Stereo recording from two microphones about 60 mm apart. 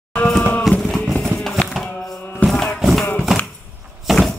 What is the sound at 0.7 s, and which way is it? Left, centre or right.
Music, centre.